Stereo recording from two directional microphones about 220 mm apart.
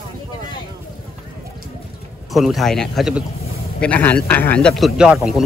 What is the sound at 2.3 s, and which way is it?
A man's voice, centre (ahead or behind).